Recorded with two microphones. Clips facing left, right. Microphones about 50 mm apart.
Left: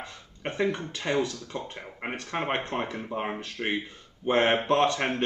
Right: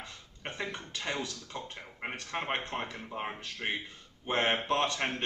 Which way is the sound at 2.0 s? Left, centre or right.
Centre.